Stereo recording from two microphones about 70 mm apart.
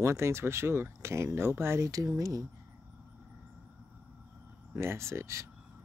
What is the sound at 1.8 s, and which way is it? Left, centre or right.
Speech, right.